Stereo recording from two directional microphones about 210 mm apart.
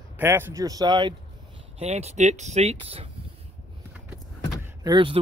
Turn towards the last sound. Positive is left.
turn(degrees=-25)  # may be behind; listen again after turning